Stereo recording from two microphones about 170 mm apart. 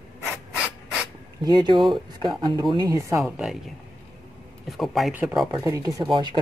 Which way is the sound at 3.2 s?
5° right (ahead or behind).